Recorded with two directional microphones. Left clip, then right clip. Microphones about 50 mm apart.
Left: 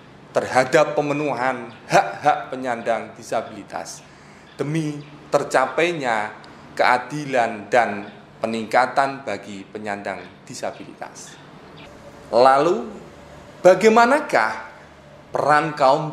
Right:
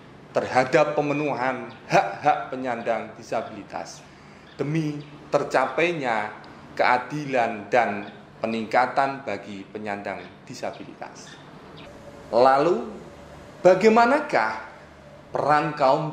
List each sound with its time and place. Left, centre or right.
0.3 s a man's voice: left
12.3 s a man's voice: left